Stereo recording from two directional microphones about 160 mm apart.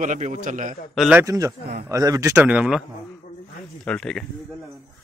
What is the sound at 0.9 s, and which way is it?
Speech, centre (ahead or behind).